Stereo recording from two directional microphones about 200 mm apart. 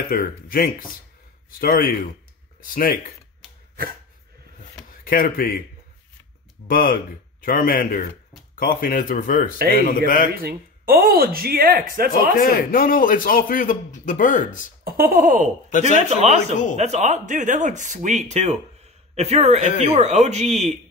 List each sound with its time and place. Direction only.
0.1 s a man's voice: 45° left (ahead or behind)
5.0 s a man's voice: 45° left (ahead or behind)
6.7 s a man's voice: 45° left (ahead or behind)
10.3 s speech: 45° right (ahead or behind)
12.1 s a man's voice: 50° left (ahead or behind)
14.9 s speech: 50° right (ahead or behind); by 19.6 s 30° right (ahead or behind)
19.6 s speech: 40° left (ahead or behind)
19.9 s speech: 35° right (ahead or behind)